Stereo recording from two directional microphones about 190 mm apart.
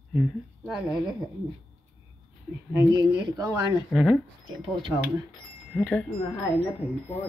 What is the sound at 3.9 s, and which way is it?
Speech, centre (ahead or behind).